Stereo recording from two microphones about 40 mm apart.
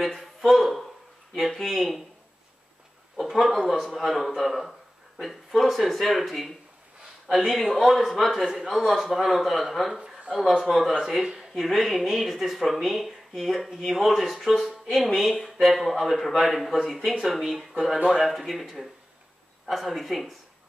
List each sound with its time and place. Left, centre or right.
0.0 s a man's voice: centre
3.2 s a man's voice: centre
11.1 s a man's voice: centre
17.2 s speech: centre
17.9 s speech: centre
18.2 s a man's voice: centre